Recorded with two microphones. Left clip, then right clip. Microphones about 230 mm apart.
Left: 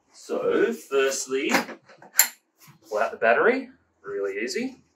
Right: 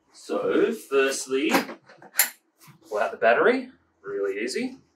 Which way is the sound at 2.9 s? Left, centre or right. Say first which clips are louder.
Even; centre.